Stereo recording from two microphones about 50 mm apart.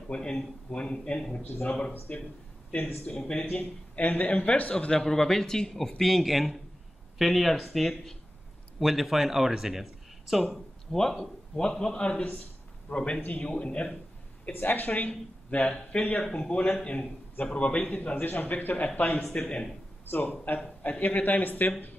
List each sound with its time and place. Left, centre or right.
0.1 s a man's voice: centre
1.4 s speech: left
2.1 s a man's voice: left
3.1 s a man's voice: centre
3.3 s speech: left
4.7 s speech: centre
10.9 s a man's voice: centre
14.5 s a man's voice: left